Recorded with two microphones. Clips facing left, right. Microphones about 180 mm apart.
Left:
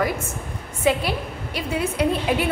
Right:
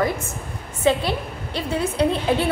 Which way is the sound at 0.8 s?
10° left (ahead or behind).